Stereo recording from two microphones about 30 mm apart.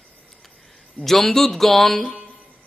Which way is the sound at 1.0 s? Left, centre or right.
Centre.